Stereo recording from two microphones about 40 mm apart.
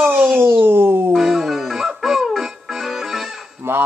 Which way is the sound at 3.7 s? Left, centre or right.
Right.